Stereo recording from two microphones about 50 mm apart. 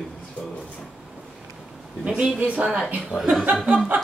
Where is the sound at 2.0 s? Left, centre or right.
Right.